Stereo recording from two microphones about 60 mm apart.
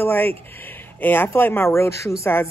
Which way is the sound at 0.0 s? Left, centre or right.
Left.